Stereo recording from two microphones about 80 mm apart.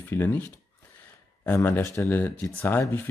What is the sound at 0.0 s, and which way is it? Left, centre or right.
Speech, left.